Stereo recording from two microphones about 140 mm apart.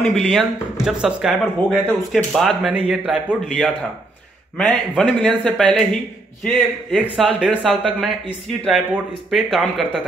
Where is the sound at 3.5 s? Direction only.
10° left (ahead or behind).